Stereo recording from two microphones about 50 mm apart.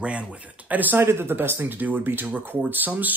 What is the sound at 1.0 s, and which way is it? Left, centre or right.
Speech, right.